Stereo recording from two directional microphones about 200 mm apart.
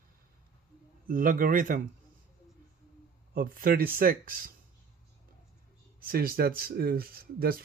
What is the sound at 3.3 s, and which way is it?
Speech, 45° right (ahead or behind).